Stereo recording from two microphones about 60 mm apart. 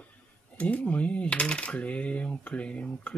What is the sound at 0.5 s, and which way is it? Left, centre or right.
Speech, left.